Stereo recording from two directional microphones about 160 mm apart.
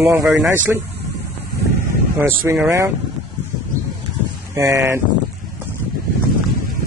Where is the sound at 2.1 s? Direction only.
15° right (ahead or behind).